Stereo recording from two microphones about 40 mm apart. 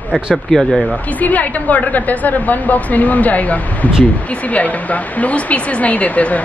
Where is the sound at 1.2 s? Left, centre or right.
Left.